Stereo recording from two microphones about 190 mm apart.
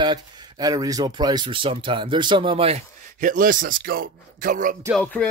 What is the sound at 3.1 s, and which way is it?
A man's voice, 45° right (ahead or behind).